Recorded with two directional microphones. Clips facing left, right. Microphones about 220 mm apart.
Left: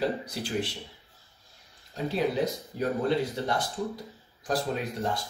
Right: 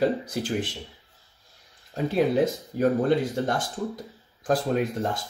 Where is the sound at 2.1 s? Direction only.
50° right (ahead or behind).